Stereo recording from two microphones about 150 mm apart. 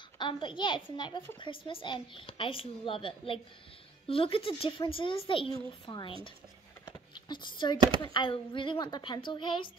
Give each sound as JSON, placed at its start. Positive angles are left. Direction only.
{"t": 0.2, "sound": "a woman's voice", "side_deg": 30}
{"t": 6.9, "sound": "a sound", "side_deg": 30}
{"t": 8.0, "sound": "a woman's voice", "side_deg": 30}